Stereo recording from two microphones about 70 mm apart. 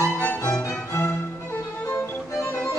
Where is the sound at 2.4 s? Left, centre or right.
Left.